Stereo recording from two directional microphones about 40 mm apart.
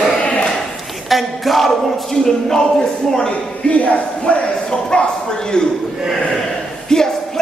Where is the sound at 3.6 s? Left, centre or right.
Left.